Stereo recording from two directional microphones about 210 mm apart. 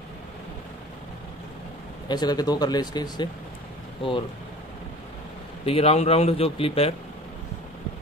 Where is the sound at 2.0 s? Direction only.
20° left (ahead or behind).